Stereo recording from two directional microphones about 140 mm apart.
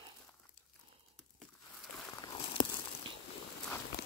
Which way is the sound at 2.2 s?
35° left (ahead or behind).